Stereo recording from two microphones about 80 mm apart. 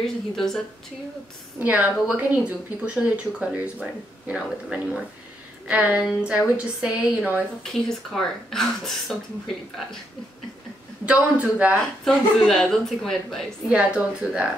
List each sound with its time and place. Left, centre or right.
0.0 s speech: centre
1.6 s a woman's voice: right
7.6 s speech: centre
11.1 s speech: centre
12.0 s speech: centre
13.7 s speech: centre